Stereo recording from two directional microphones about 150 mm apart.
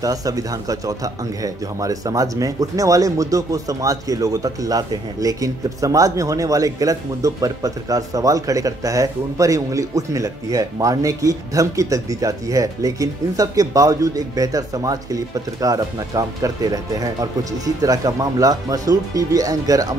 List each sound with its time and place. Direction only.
0.0 s speech: 25° right (ahead or behind)